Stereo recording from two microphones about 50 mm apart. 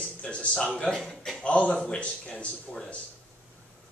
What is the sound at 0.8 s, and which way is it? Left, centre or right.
Speech, centre.